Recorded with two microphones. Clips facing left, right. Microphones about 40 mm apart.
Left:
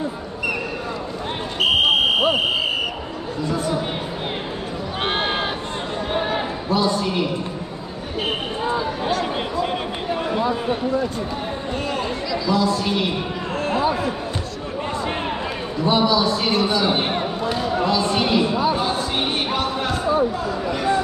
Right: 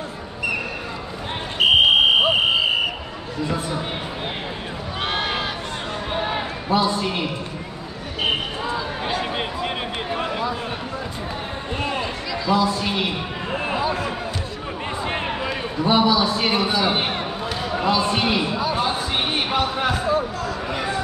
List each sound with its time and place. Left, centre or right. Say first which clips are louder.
1.6 s fire alarm: right 2 dB; centre
3.4 s a man's voice: left 3 dB; centre
5.0 s a sound: left 2 dB; left
6.7 s a man's voice: even; centre
9.0 s a sound: left 2 dB; right
12.5 s a man's voice: even; centre
15.8 s a man's voice: even; centre
18.8 s music: even; centre